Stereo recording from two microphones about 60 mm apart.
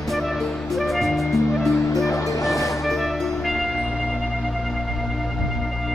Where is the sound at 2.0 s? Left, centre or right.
Left.